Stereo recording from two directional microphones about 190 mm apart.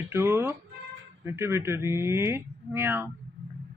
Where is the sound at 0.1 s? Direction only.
15° right (ahead or behind).